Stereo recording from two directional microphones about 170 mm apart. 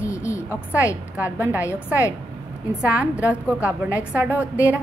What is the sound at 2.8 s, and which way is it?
A woman's voice, 5° right (ahead or behind).